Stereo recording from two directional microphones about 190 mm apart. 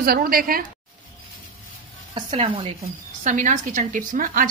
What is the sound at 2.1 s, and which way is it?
Speech, 30° right (ahead or behind).